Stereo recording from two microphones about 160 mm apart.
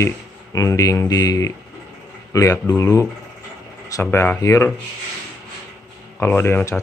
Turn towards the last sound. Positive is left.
turn(degrees=15)  # may be behind; listen again after turning